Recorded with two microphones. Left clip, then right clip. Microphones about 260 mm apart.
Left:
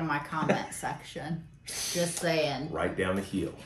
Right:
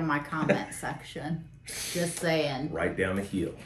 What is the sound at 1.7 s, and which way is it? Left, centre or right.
Speech, centre.